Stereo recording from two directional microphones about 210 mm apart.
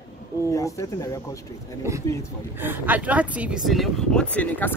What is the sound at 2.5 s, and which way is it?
Speech, 10° right (ahead or behind).